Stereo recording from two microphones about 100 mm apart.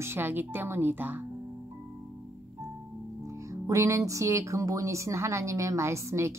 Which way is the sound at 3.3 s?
30° right (ahead or behind).